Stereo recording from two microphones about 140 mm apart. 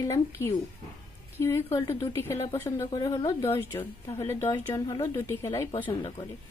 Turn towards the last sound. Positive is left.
turn(degrees=20)  # may be behind; listen again after turning